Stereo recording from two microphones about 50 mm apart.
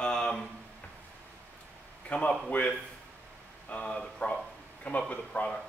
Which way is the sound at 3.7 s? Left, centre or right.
Centre.